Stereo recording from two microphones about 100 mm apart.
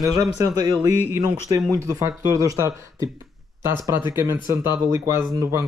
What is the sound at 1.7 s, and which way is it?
Speech, 35° right (ahead or behind).